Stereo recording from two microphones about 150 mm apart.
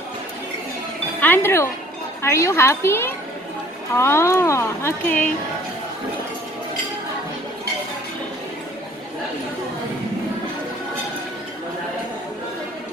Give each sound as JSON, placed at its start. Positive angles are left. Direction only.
{"t": 1.2, "sound": "speech", "side_deg": 15}